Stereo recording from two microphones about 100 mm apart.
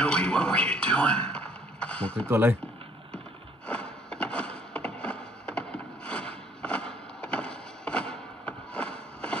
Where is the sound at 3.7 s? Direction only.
10° left (ahead or behind).